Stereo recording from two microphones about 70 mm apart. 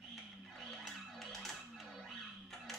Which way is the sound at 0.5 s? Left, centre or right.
Centre.